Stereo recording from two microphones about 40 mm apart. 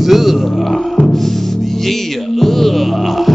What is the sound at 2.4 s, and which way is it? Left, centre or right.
Music, centre.